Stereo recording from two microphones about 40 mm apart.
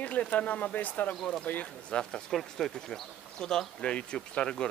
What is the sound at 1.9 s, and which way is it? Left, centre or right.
Speech, left.